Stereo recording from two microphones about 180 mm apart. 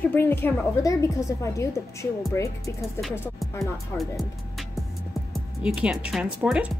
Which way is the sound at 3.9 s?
Centre (ahead or behind).